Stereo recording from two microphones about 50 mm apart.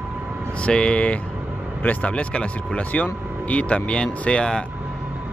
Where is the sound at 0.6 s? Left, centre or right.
Left.